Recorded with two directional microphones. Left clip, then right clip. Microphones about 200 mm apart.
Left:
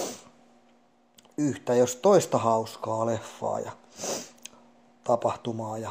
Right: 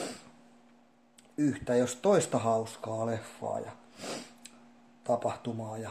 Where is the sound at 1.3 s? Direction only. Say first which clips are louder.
Left 4 dB; 30° left (ahead or behind).